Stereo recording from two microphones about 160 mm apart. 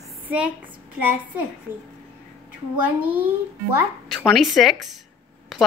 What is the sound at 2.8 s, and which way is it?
Speech, 10° right (ahead or behind).